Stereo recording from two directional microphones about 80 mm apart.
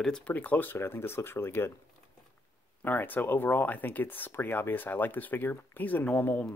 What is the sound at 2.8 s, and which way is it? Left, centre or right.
Speech, left.